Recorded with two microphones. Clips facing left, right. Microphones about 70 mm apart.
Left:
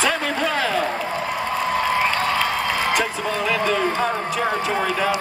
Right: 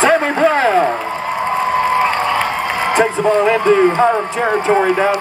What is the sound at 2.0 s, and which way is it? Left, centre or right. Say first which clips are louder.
A man's voice: right 5 dB; right.